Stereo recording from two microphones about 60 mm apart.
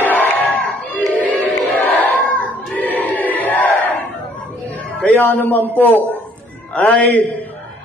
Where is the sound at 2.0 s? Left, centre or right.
Left.